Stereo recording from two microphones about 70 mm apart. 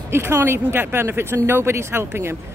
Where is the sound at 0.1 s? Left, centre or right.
Right.